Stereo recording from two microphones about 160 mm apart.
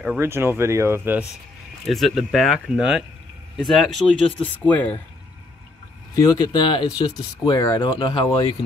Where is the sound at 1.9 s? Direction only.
Centre (ahead or behind).